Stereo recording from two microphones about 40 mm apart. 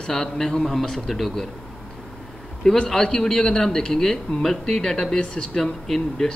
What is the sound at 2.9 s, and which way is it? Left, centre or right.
Speech, centre.